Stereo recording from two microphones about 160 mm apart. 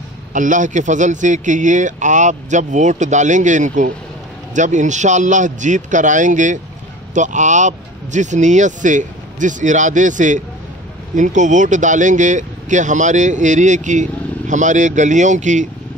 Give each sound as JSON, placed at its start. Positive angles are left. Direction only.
{"t": 0.3, "sound": "speech", "side_deg": -55}